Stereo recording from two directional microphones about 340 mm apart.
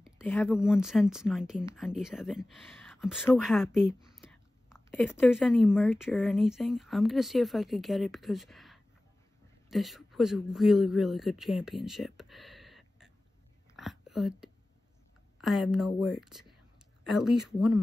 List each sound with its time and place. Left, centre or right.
0.0 s a man's voice: centre
13.7 s a sound: centre
15.3 s speech: centre